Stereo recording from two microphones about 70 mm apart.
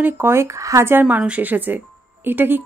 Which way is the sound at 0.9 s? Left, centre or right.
Right.